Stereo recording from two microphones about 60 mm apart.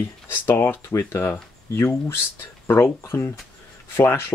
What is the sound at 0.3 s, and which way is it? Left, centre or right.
Speech, left.